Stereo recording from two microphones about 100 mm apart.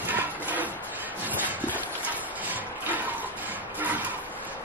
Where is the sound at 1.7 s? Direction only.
15° right (ahead or behind).